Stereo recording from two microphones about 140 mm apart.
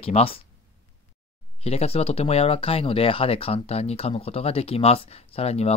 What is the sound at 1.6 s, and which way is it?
Speech, 45° left (ahead or behind).